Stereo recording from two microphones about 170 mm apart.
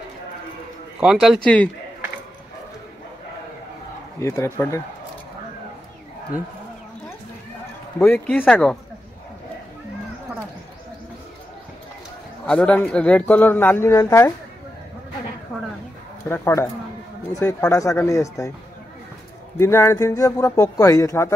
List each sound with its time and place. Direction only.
1.0 s speech: centre (ahead or behind)
4.2 s speech: 15° left (ahead or behind)
8.1 s speech: 5° left (ahead or behind)
12.4 s speech: 5° left (ahead or behind)
16.3 s speech: 15° left (ahead or behind)
19.6 s speech: 15° left (ahead or behind)